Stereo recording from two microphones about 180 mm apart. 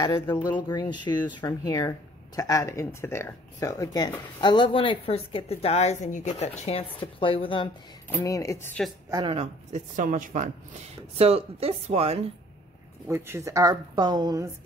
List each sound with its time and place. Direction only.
0.0 s a woman's voice: 25° left (ahead or behind)
8.1 s speech: 15° left (ahead or behind)
9.1 s speech: 30° right (ahead or behind)
11.1 s speech: 35° right (ahead or behind)
13.1 s speech: 15° right (ahead or behind)